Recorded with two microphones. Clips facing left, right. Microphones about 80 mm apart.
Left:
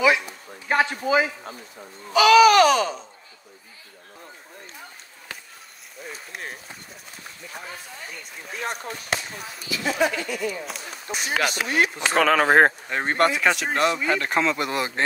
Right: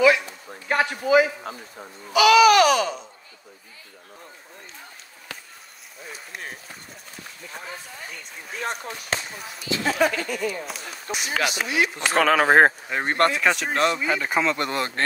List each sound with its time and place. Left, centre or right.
0.7 s speech: left
2.1 s a sound: left
6.3 s speech: centre
9.8 s speech: right
11.1 s a sound: left
11.3 s speech: centre